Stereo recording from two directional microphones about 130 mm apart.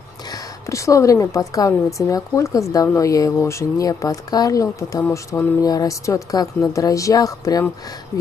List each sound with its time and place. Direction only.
0.3 s a woman's voice: 25° left (ahead or behind)